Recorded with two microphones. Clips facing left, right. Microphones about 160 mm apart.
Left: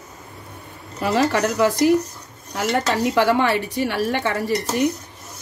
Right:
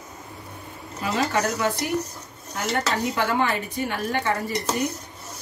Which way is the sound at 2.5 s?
70° left (ahead or behind).